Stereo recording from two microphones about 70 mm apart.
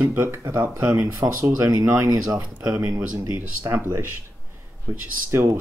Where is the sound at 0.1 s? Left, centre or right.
Right.